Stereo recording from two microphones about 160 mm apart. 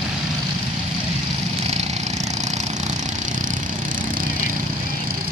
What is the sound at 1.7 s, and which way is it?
Vehicle, 45° right (ahead or behind).